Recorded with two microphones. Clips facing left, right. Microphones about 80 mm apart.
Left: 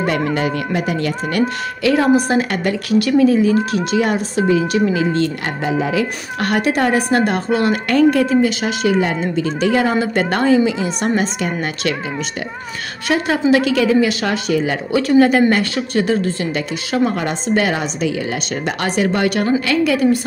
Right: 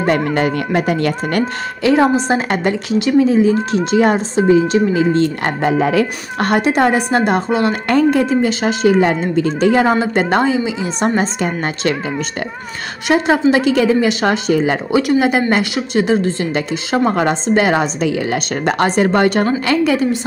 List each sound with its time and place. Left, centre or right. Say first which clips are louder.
0.3 s speech: right 3 dB; right
1.8 s a woman's voice: right 1 dB; right
5.6 s speech: right 4 dB; right
6.4 s a woman's voice: right 3 dB; right
13.1 s a woman's voice: right 2 dB; right
15.0 s a woman's voice: left 3 dB; centre
18.0 s speech: right 3 dB; right
18.8 s a woman's voice: right 4 dB; right